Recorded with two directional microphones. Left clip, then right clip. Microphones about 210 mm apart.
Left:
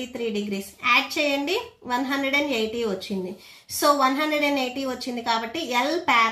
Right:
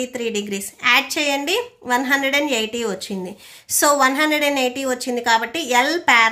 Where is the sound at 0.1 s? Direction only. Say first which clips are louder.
Right 4 dB; 50° right (ahead or behind).